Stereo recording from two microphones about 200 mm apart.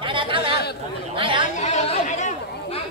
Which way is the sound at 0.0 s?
25° right (ahead or behind).